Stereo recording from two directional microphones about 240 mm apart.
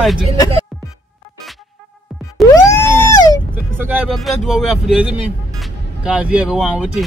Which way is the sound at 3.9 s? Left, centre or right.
Centre.